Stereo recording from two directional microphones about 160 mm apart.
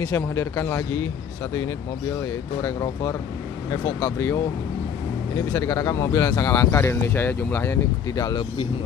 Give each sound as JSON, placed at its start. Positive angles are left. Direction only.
{"t": 0.0, "sound": "speech", "side_deg": 15}
{"t": 2.1, "sound": "speech", "side_deg": 20}
{"t": 5.5, "sound": "speech", "side_deg": 20}